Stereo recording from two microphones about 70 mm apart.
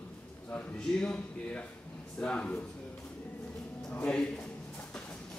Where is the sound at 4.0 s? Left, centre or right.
Centre.